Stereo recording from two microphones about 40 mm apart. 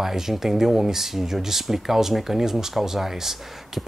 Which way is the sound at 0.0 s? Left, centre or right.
Centre.